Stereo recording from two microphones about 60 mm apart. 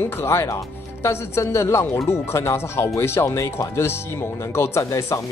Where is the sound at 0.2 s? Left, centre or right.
Left.